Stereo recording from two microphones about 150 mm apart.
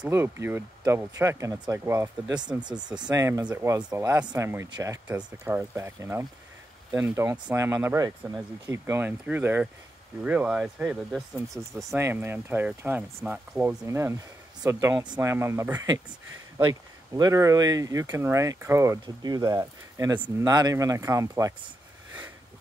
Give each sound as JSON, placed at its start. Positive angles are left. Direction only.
{"t": 0.1, "sound": "speech", "side_deg": -15}
{"t": 7.4, "sound": "speech", "side_deg": -15}
{"t": 11.8, "sound": "speech", "side_deg": -20}